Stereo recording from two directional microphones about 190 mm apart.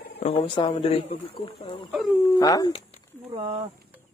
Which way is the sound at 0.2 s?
30° left (ahead or behind).